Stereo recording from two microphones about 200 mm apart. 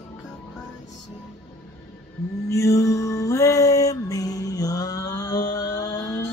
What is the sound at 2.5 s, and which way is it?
Music, 15° left (ahead or behind).